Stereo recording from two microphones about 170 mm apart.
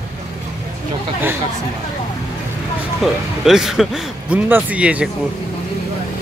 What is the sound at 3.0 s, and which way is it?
Speech, centre (ahead or behind).